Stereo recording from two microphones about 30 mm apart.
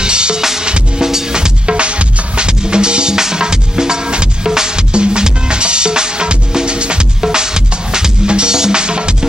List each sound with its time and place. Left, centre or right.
0.0 s music: right
0.4 s drum kit: centre
0.7 s music: right
1.0 s music: right
1.7 s music: right
7.2 s music: centre